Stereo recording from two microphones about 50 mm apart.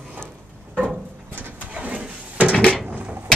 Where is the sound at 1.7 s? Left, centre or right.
Right.